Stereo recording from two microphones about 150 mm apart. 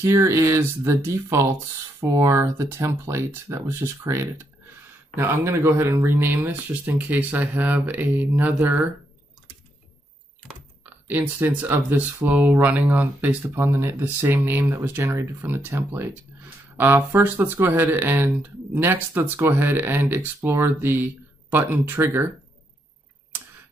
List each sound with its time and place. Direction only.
0.0 s speech: 20° right (ahead or behind)
10.8 s speech: 10° right (ahead or behind)